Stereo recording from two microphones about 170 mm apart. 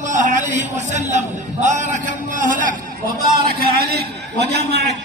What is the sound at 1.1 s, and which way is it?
A man's voice, 45° right (ahead or behind).